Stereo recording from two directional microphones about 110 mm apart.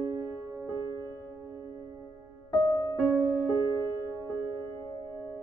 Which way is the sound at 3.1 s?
20° right (ahead or behind).